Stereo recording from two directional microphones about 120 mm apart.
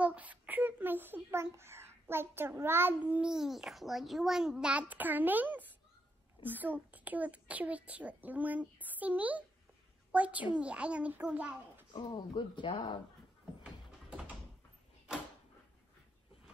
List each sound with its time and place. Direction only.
0.0 s a child's voice: 10° right (ahead or behind)
11.9 s speech: 40° left (ahead or behind)